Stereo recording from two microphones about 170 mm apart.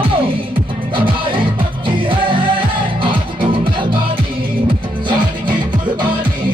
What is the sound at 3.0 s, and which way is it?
Music, 30° right (ahead or behind).